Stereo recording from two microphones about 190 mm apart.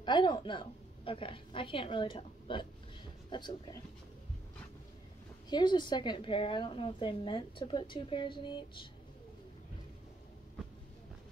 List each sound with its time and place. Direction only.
0.0 s a woman's voice: 25° left (ahead or behind)
5.5 s a woman's voice: 25° left (ahead or behind)